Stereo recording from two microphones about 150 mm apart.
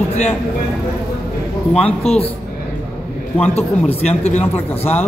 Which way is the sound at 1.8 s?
45° left (ahead or behind).